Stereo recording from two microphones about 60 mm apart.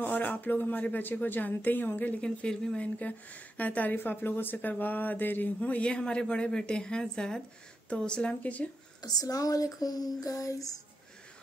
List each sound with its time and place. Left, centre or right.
0.0 s speech: left
2.2 s speech: centre
9.0 s speech: left